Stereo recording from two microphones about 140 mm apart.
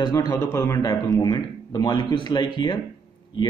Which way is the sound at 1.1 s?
30° left (ahead or behind).